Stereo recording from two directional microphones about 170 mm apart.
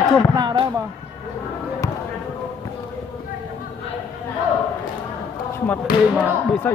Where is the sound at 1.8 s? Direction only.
20° left (ahead or behind).